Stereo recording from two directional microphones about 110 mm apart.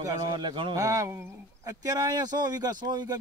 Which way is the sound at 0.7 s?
30° right (ahead or behind).